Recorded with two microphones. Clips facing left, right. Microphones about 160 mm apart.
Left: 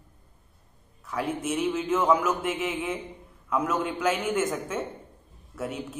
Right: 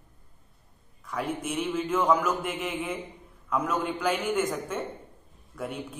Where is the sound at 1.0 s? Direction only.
5° left (ahead or behind).